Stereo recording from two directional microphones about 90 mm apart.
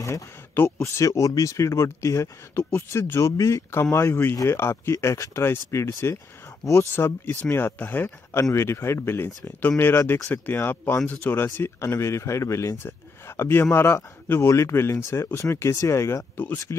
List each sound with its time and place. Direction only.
0.0 s speech: 30° left (ahead or behind)